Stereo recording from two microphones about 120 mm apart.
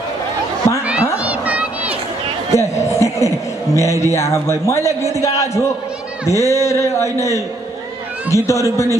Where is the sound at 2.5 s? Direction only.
25° left (ahead or behind).